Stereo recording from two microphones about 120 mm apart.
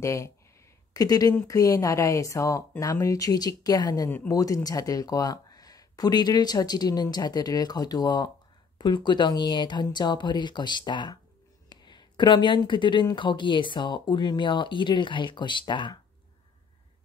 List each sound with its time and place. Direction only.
0.0 s speech: 25° left (ahead or behind)
1.3 s speech: 20° left (ahead or behind); by 16.0 s 40° left (ahead or behind)